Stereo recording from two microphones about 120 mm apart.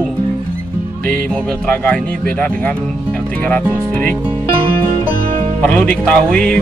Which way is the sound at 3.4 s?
10° left (ahead or behind).